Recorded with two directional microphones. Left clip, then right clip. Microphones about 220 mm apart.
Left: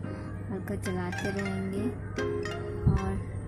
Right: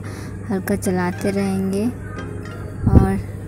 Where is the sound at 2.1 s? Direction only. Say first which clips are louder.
Left 1 dB; centre (ahead or behind).